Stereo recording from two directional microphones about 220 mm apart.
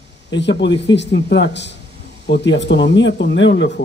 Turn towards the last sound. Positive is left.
turn(degrees=55)  # may be behind; listen again after turning